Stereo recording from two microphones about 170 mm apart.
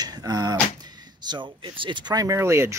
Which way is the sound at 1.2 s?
25° right (ahead or behind).